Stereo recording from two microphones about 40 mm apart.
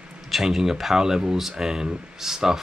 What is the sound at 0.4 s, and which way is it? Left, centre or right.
Speech, centre.